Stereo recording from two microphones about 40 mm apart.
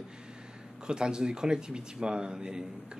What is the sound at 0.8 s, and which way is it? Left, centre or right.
Speech, right.